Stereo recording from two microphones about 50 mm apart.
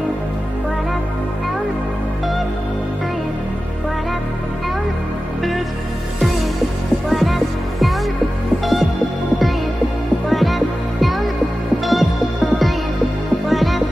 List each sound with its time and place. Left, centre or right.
7.1 s music: centre
10.3 s music: centre